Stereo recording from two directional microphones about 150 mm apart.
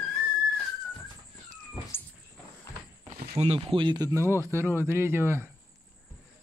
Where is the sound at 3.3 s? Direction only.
40° right (ahead or behind).